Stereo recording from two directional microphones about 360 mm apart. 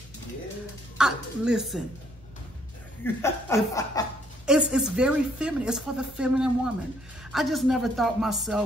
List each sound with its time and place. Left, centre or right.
0.9 s a woman's voice: centre
3.0 s speech: centre
4.5 s a woman's voice: centre